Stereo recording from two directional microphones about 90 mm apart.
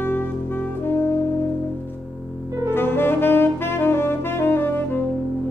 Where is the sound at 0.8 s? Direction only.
25° left (ahead or behind).